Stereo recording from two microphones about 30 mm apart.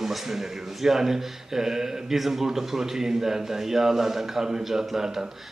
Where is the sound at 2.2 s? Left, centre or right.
Centre.